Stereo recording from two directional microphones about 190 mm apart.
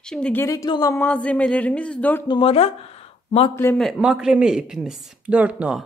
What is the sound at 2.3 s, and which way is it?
Speech, 30° left (ahead or behind).